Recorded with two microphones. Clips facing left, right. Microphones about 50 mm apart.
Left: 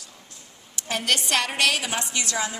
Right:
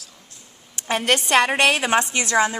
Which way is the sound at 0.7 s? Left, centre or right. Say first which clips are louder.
Right 5 dB; right.